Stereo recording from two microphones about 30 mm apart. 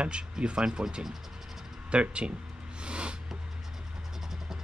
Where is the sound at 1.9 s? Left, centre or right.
Right.